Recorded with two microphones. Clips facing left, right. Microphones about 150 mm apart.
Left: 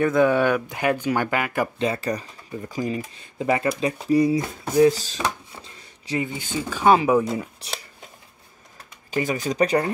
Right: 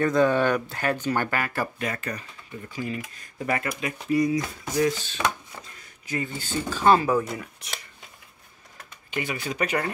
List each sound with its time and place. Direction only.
0.0 s speech: 10° left (ahead or behind)
1.9 s speech: 35° left (ahead or behind)
3.3 s speech: 20° left (ahead or behind)
3.6 s speech: 35° left (ahead or behind)
4.9 s a sound: 35° left (ahead or behind)
6.2 s speech: 15° left (ahead or behind)
7.2 s speech: 30° left (ahead or behind)
9.1 s speech: 40° left (ahead or behind)